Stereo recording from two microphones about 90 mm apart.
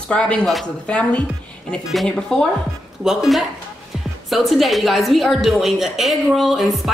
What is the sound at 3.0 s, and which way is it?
A woman's voice, 5° right (ahead or behind).